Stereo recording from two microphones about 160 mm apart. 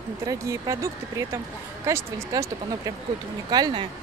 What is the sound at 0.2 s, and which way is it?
A woman's voice, 20° right (ahead or behind).